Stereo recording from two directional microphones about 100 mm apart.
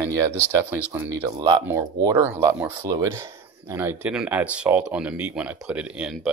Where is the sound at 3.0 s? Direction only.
30° right (ahead or behind).